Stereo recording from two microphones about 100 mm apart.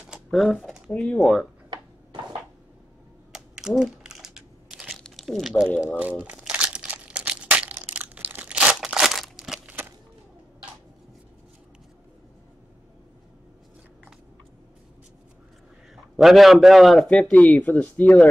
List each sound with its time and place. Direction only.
0.1 s typing: centre (ahead or behind)
0.9 s a man's voice: 10° left (ahead or behind)
1.2 s speech: centre (ahead or behind)
3.3 s crumpling: 5° right (ahead or behind)
6.2 s crumpling: 10° right (ahead or behind)
9.7 s a sound: 20° right (ahead or behind)
16.2 s a man's voice: centre (ahead or behind); by 18.3 s 15° left (ahead or behind)